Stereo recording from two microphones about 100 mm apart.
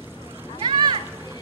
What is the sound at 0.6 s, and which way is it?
Splash, 50° right (ahead or behind).